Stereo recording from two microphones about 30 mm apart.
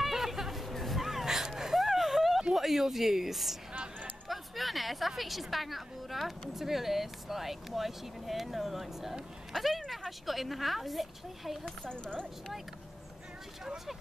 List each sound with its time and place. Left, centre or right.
0.0 s hubbub: centre
1.2 s a sound: centre
2.5 s a woman's voice: centre
11.9 s speech: left